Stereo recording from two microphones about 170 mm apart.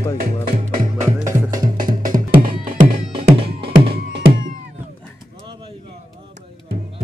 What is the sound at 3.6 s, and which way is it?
Music, 30° right (ahead or behind).